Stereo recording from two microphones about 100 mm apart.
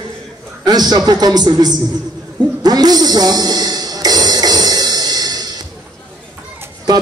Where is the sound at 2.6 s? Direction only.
40° right (ahead or behind).